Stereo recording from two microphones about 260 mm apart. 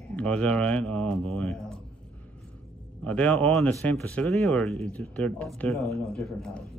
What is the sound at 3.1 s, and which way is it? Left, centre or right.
Speech, centre.